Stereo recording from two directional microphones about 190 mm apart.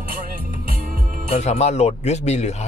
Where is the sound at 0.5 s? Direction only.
50° right (ahead or behind).